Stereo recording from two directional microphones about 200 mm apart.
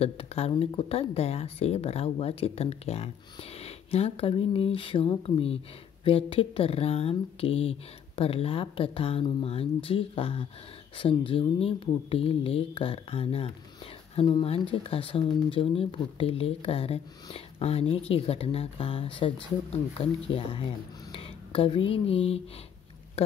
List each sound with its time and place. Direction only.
0.0 s speech: 30° left (ahead or behind)